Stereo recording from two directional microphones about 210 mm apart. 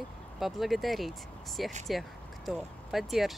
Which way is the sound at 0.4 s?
Centre (ahead or behind).